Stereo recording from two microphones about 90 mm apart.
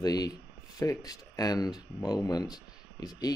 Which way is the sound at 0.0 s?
45° left (ahead or behind).